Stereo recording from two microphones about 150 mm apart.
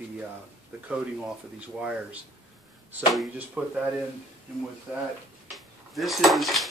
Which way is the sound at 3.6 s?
10° right (ahead or behind).